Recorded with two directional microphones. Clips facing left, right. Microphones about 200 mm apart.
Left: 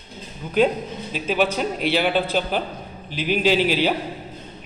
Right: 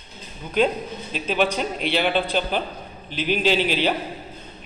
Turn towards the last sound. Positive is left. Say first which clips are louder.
# left 2 dB
turn(degrees=5)  # may be behind; listen again after turning